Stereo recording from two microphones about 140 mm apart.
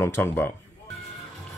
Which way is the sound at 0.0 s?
15° left (ahead or behind).